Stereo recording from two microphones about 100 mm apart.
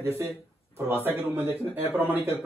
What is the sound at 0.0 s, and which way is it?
Speech, 30° right (ahead or behind).